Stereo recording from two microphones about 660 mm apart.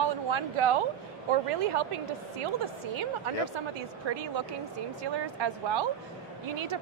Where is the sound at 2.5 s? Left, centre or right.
Right.